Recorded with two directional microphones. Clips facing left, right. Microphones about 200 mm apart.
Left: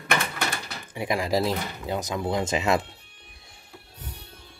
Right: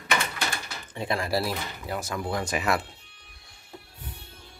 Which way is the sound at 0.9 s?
15° left (ahead or behind).